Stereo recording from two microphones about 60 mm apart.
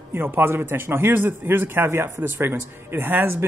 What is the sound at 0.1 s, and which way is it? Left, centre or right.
Speech, right.